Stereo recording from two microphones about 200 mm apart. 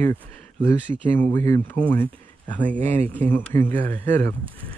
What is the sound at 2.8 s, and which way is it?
Speech, 35° right (ahead or behind).